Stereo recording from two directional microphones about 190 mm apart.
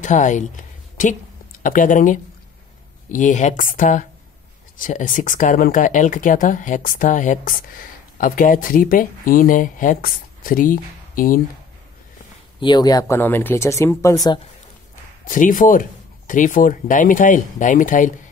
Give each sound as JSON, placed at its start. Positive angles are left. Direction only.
{"t": 0.0, "sound": "a sound", "side_deg": 40}
{"t": 1.6, "sound": "speech", "side_deg": 45}
{"t": 12.5, "sound": "speech", "side_deg": 25}
{"t": 15.2, "sound": "speech", "side_deg": 45}